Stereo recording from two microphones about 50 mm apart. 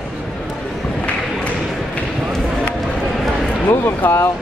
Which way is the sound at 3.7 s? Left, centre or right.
Left.